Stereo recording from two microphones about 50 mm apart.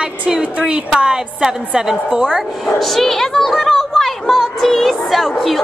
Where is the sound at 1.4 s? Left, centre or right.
Centre.